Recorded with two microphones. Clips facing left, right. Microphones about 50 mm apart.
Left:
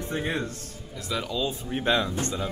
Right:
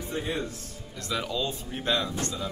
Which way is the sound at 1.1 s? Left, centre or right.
Centre.